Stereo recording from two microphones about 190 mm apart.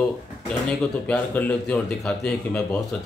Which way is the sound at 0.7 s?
5° left (ahead or behind).